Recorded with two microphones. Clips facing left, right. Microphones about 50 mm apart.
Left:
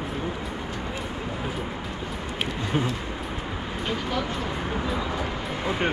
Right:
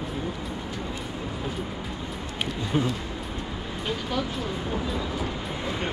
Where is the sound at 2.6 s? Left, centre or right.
Centre.